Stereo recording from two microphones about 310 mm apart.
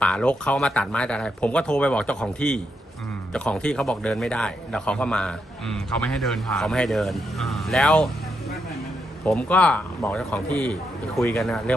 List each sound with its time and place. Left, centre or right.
0.0 s a man's voice: centre
9.2 s a man's voice: centre